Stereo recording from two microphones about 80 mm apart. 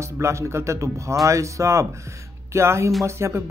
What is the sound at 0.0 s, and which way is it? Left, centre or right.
Speech, right.